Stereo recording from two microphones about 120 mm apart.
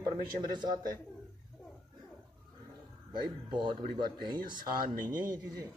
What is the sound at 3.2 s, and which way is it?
Speech, 40° right (ahead or behind).